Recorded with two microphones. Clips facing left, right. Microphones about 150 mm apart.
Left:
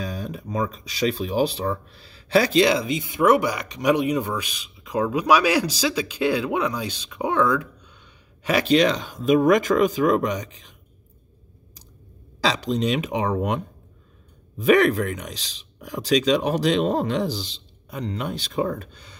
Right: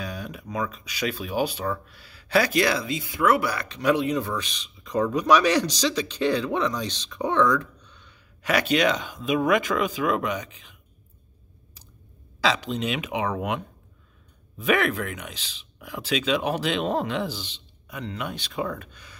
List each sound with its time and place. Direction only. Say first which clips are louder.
0.0 s speech: left 3 dB; 30° left (ahead or behind); by 7.6 s 10° left (ahead or behind)
8.5 s speech: left 3 dB; 30° left (ahead or behind)
9.1 s speech: left 5 dB; 45° left (ahead or behind)
12.4 s speech: left 2 dB; 35° left (ahead or behind)
14.6 s speech: left 6 dB; 35° left (ahead or behind)